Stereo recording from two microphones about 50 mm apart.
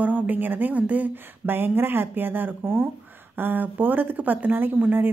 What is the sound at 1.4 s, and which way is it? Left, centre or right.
A woman's voice, right.